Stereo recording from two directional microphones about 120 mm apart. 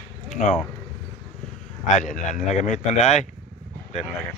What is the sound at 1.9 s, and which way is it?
Speech, 90° left.